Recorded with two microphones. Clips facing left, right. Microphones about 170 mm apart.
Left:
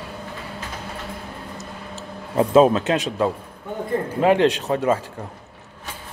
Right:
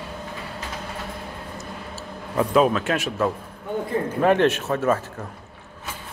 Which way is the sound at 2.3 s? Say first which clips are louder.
Left 4 dB; 25° left (ahead or behind).